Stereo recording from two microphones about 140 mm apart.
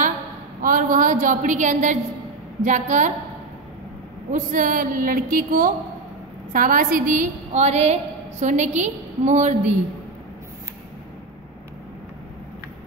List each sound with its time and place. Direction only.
0.6 s a woman's voice: 75° right (ahead or behind)
4.3 s a woman's voice: 70° right (ahead or behind); by 5.7 s 90° right
6.5 s a woman's voice: 80° right; by 9.8 s 55° right (ahead or behind)